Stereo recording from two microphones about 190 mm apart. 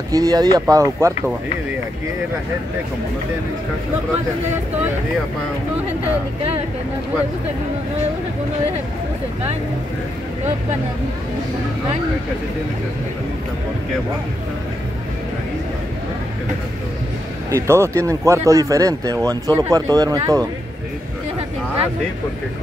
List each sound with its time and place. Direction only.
0.1 s speech: 20° right (ahead or behind)
17.5 s speech: 15° right (ahead or behind)